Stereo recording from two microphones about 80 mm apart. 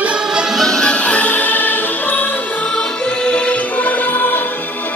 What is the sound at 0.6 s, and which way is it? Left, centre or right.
Music, centre.